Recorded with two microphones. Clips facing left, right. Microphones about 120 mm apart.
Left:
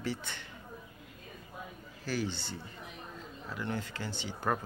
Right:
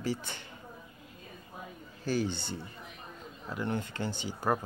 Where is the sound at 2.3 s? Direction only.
55° right (ahead or behind).